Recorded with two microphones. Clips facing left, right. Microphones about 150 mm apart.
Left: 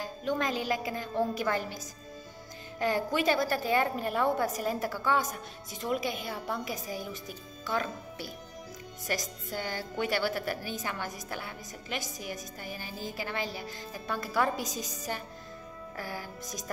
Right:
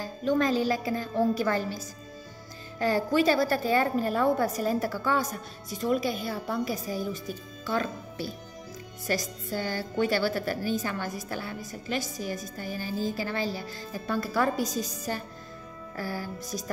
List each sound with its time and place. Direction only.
0.0 s music: 20° left (ahead or behind)
0.7 s a woman's voice: 20° left (ahead or behind)
2.8 s a woman's voice: 20° left (ahead or behind)
13.2 s speech: 35° right (ahead or behind)
14.1 s a woman's voice: 15° left (ahead or behind)
16.0 s speech: 35° right (ahead or behind)